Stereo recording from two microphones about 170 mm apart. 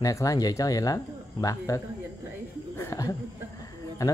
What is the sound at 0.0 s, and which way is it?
Speech, 20° left (ahead or behind).